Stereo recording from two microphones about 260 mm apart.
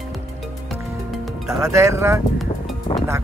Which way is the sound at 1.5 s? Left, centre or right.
Centre.